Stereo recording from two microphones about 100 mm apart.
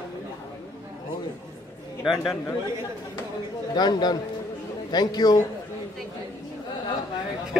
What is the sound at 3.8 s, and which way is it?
A man's voice, 45° left (ahead or behind).